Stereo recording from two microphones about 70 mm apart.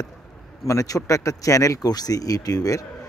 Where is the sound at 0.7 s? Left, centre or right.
Left.